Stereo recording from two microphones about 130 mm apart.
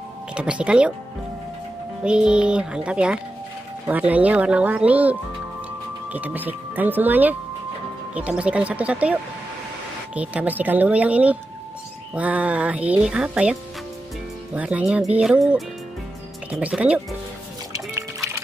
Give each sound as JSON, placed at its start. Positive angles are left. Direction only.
{"t": 0.3, "sound": "speech", "side_deg": -10}
{"t": 2.0, "sound": "speech", "side_deg": -5}
{"t": 6.1, "sound": "speech", "side_deg": -15}
{"t": 17.7, "sound": "music", "side_deg": -20}